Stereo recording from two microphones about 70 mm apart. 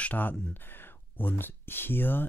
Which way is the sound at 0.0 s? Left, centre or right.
Left.